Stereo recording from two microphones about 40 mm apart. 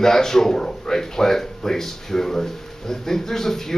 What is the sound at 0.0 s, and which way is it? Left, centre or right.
Speech, centre.